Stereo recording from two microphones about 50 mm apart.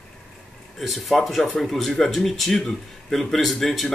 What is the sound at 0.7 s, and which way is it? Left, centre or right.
A man's voice, centre.